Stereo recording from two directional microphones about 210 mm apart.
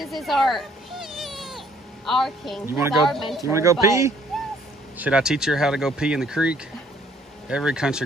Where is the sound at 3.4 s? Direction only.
15° right (ahead or behind).